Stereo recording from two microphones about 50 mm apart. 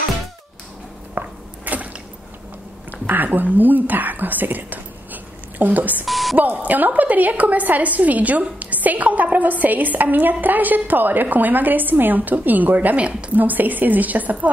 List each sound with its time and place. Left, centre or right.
1.1 s a sound: right
2.9 s speech: right
6.0 s beep: centre
6.3 s a woman's voice: right
13.4 s a woman's voice: right